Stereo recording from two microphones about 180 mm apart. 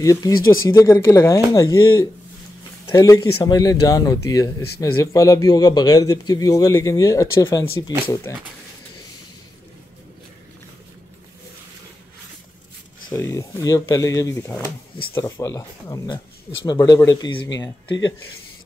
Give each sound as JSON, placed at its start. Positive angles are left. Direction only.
{"t": 0.0, "sound": "speech", "side_deg": 20}
{"t": 13.1, "sound": "speech", "side_deg": 15}